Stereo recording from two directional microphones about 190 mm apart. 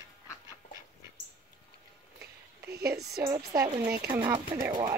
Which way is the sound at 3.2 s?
15° right (ahead or behind).